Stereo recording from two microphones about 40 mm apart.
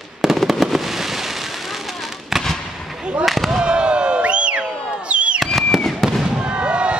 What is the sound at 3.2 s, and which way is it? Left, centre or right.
Fireworks, centre.